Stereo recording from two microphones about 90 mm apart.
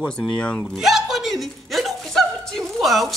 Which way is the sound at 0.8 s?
Centre (ahead or behind).